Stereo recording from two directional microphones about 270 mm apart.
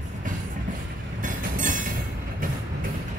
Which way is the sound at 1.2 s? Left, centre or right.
Right.